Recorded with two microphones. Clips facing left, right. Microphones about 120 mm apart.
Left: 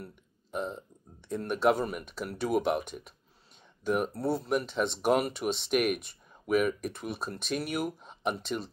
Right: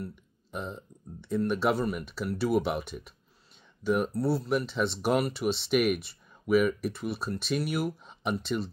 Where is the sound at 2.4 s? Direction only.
5° right (ahead or behind).